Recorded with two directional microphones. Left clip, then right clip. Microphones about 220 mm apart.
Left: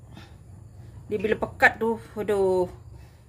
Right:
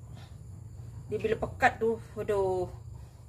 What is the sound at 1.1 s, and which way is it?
Speech, 50° left (ahead or behind).